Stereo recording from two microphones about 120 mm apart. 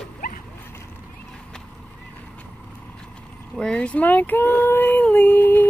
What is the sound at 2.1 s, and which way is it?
Vehicle, 10° left (ahead or behind).